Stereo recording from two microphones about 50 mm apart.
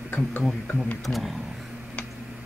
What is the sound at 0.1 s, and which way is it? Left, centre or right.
Speech, left.